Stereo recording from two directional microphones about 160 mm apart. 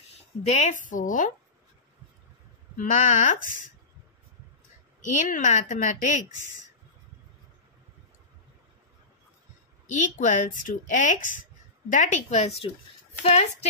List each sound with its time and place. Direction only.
0.5 s a woman's voice: 45° left (ahead or behind)
2.8 s a woman's voice: 50° left (ahead or behind)
5.2 s a woman's voice: 50° left (ahead or behind)
9.8 s a woman's voice: 50° left (ahead or behind)